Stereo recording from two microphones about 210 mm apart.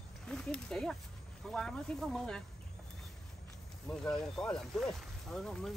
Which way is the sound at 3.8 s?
5° left (ahead or behind).